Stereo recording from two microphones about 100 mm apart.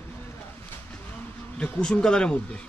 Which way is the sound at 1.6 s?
10° left (ahead or behind).